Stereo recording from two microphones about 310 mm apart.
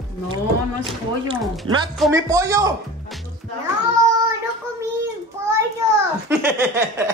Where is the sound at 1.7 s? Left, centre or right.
Right.